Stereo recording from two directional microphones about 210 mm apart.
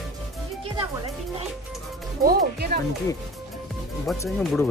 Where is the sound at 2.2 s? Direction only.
45° right (ahead or behind).